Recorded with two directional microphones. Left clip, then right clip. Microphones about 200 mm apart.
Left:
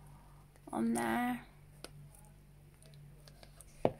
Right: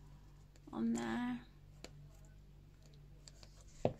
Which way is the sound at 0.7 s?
30° left (ahead or behind).